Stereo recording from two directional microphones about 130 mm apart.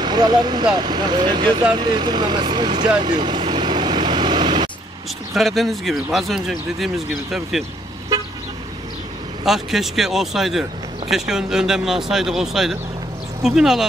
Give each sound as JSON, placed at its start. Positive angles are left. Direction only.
{"t": 0.0, "sound": "speech", "side_deg": -30}
{"t": 3.2, "sound": "vehicle", "side_deg": -35}
{"t": 5.3, "sound": "speech", "side_deg": 0}
{"t": 9.4, "sound": "speech", "side_deg": 0}